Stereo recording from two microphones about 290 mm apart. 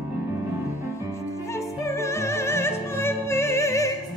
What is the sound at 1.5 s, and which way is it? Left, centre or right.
Opera, centre.